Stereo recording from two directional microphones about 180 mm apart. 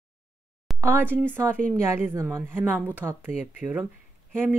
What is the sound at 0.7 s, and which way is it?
Speech, 15° right (ahead or behind).